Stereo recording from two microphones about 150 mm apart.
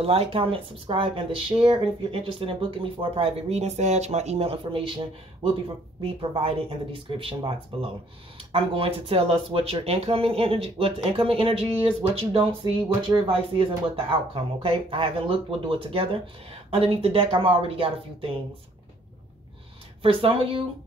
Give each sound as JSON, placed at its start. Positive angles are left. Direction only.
{"t": 0.0, "sound": "speech", "side_deg": -40}
{"t": 6.3, "sound": "speech", "side_deg": -35}
{"t": 20.0, "sound": "speech", "side_deg": -40}